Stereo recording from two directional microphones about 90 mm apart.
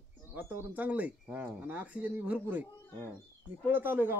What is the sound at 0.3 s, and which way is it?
Speech, 20° right (ahead or behind).